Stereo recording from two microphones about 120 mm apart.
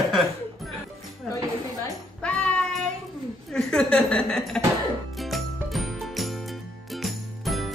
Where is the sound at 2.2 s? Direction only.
10° left (ahead or behind).